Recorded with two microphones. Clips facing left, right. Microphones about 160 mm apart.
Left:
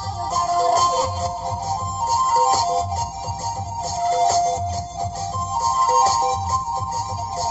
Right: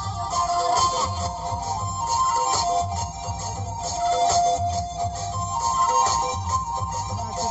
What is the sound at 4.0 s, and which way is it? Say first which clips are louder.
Music: left 2 dB; 40° left (ahead or behind).